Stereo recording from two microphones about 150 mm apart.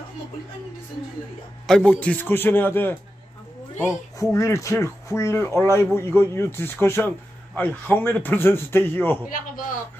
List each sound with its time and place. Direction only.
1.7 s speech: 5° left (ahead or behind)
9.3 s a man's voice: 65° left (ahead or behind)